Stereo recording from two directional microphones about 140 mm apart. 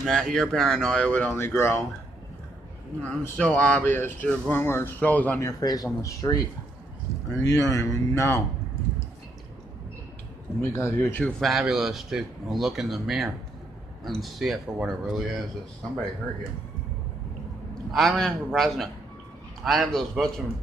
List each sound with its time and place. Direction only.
0.0 s speech: centre (ahead or behind)
1.3 s speech: 20° left (ahead or behind)
3.0 s speech: 10° left (ahead or behind)
5.4 s speech: 25° left (ahead or behind)
7.4 s speech: 20° left (ahead or behind)
10.6 s speech: 20° left (ahead or behind)
11.4 s speech: centre (ahead or behind)
17.9 s speech: centre (ahead or behind)